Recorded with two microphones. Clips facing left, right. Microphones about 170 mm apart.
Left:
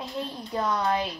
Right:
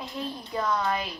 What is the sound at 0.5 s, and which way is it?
Speech, 35° left (ahead or behind).